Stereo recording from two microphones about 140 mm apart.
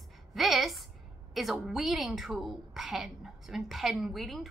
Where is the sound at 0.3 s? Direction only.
Centre (ahead or behind).